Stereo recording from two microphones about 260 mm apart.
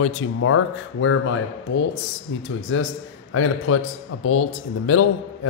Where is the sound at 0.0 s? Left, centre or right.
Left.